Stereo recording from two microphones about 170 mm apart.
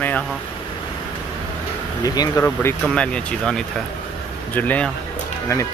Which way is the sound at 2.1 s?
20° left (ahead or behind).